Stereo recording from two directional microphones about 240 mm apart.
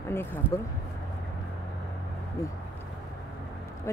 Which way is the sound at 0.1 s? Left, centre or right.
Centre.